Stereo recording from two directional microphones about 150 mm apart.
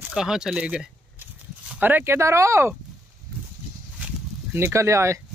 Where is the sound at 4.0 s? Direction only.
15° right (ahead or behind).